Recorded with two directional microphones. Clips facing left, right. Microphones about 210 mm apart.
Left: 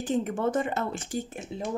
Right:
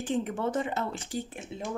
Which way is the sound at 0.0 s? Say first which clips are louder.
Left 3 dB; 45° left (ahead or behind).